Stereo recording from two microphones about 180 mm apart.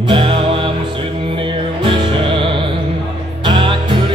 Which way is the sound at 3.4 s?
25° right (ahead or behind).